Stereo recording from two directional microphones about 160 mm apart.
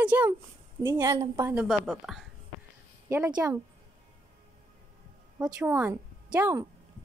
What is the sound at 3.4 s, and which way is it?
Speech, 10° right (ahead or behind).